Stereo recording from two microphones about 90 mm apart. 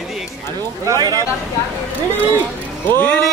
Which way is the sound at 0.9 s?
40° right (ahead or behind).